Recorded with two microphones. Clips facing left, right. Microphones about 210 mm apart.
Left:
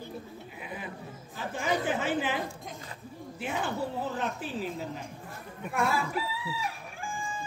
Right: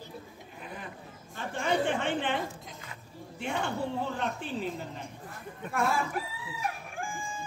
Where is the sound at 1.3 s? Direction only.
5° left (ahead or behind).